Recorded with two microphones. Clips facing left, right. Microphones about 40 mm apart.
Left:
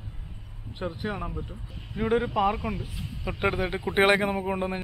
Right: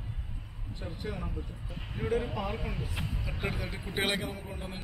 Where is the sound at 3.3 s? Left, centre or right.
Left.